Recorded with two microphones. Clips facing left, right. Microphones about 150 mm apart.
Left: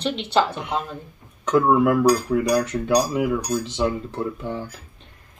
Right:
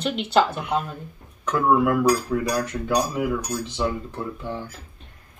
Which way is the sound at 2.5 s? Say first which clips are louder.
Left 4 dB; 15° left (ahead or behind).